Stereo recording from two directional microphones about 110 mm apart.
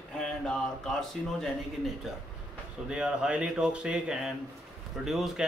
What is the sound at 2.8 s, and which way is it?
Speech, 5° right (ahead or behind).